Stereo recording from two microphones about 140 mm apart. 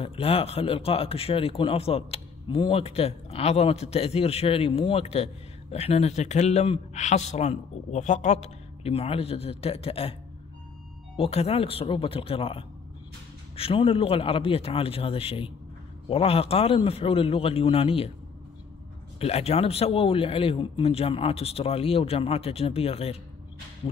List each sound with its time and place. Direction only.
0.0 s a man's voice: 45° left (ahead or behind)
11.1 s a man's voice: 45° left (ahead or behind)
19.1 s a man's voice: 45° left (ahead or behind)